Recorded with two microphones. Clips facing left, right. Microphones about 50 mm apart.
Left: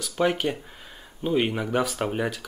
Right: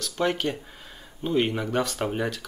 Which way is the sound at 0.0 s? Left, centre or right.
Centre.